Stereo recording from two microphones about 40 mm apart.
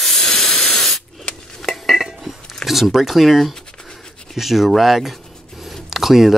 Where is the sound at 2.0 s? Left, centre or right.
Centre.